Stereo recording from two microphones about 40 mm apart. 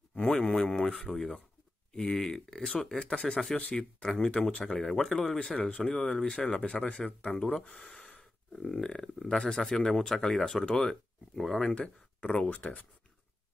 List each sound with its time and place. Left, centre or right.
0.1 s speech: left
4.5 s speech: left
4.7 s speech: centre
5.6 s speech: left
5.9 s speech: centre
11.6 s speech: left
12.4 s speech: left